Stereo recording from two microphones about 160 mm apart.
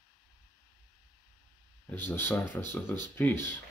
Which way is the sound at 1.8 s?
15° left (ahead or behind).